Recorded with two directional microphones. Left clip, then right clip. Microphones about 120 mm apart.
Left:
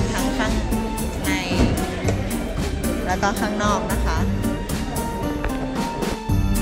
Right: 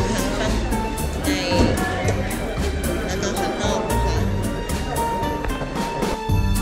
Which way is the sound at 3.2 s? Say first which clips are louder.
Left 2 dB; 55° right (ahead or behind).